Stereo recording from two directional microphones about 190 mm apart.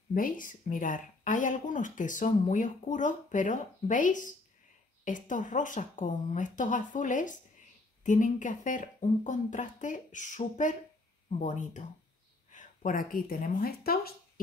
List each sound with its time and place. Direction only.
0.1 s speech: 45° left (ahead or behind)